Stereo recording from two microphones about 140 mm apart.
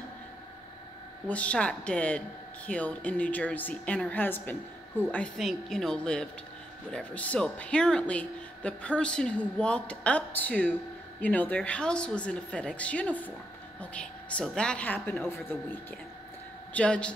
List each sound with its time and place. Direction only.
1.2 s a woman's voice: 10° left (ahead or behind)
16.7 s speech: 10° left (ahead or behind)